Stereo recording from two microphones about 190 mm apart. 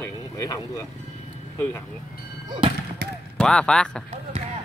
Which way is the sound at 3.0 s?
55° right (ahead or behind).